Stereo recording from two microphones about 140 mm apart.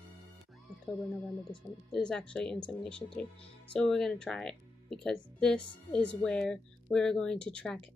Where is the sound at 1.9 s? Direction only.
5° left (ahead or behind).